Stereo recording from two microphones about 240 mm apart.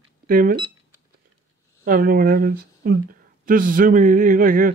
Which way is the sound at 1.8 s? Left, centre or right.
Right.